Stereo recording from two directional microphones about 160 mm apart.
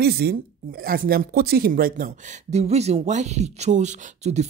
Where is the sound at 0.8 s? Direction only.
65° right (ahead or behind).